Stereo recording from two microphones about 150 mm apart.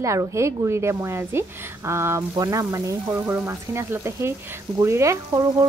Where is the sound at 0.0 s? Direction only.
20° right (ahead or behind).